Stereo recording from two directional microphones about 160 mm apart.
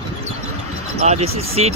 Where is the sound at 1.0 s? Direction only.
40° right (ahead or behind).